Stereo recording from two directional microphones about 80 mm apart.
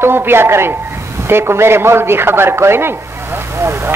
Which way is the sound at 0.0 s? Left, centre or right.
Right.